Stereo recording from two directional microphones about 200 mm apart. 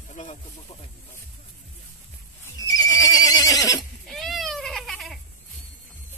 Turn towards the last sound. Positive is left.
turn(degrees=0)  # may be behind; listen again after turning